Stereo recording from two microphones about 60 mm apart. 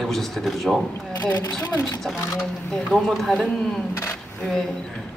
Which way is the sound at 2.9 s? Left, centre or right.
Centre.